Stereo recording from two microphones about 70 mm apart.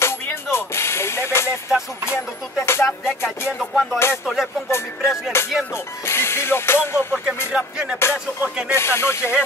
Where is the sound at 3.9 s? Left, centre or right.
Left.